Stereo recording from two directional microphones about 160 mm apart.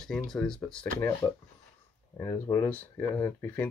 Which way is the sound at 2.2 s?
20° left (ahead or behind).